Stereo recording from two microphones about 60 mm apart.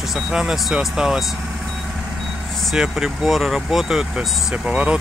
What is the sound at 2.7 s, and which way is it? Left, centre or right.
Speech, centre.